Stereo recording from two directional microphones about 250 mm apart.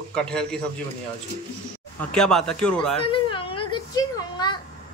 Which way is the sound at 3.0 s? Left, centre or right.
Left.